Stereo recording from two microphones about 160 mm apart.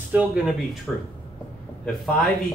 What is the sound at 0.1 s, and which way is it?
Speech, 5° right (ahead or behind).